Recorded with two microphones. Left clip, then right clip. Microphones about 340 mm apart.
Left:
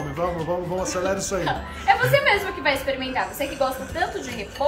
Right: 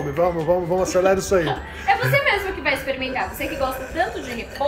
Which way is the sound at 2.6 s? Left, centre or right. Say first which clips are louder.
Right 1 dB; left.